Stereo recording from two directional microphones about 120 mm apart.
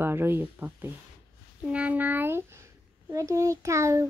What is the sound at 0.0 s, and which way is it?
A child's voice, 20° right (ahead or behind).